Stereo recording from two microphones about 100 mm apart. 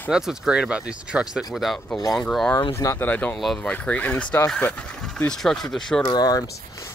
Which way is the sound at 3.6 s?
15° left (ahead or behind).